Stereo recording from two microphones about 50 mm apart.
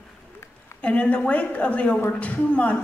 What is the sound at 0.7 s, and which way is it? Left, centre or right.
A woman's voice, left.